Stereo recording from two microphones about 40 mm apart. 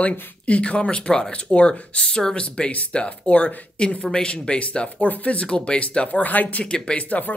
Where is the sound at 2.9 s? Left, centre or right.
Left.